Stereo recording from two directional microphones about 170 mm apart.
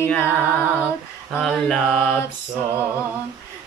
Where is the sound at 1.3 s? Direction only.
Centre (ahead or behind).